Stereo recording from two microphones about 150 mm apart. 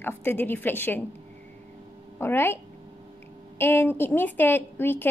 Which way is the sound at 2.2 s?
15° left (ahead or behind).